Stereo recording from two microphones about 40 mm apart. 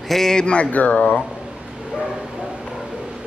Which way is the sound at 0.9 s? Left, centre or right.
Left.